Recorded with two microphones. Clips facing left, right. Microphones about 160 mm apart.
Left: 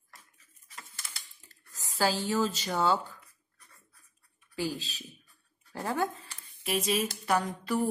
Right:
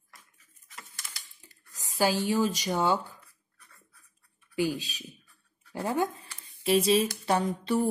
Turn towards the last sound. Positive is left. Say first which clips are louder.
# right 2 dB
turn(degrees=-25)  # may be behind; listen again after turning